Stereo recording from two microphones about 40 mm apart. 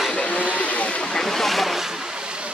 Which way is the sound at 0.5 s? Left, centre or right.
Left.